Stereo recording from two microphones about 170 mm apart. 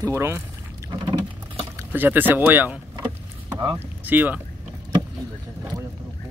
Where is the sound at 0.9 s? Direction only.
25° right (ahead or behind).